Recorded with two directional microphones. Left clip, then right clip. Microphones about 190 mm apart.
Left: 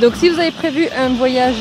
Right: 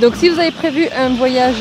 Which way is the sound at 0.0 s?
5° left (ahead or behind).